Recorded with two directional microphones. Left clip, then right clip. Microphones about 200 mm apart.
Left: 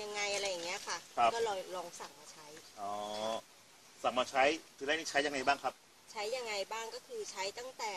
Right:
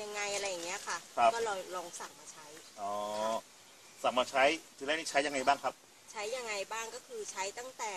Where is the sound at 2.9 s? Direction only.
15° right (ahead or behind).